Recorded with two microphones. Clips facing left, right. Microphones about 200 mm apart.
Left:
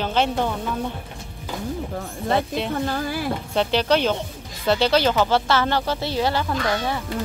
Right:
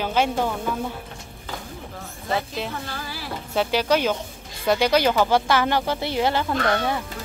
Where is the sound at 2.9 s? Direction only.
50° left (ahead or behind).